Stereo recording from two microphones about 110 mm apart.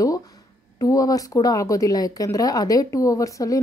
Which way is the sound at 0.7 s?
35° left (ahead or behind).